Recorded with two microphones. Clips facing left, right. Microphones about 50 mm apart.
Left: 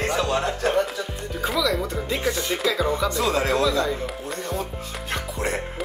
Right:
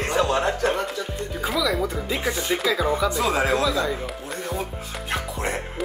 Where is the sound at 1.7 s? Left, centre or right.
Centre.